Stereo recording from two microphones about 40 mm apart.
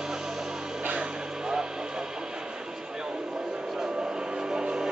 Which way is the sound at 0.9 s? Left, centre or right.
Right.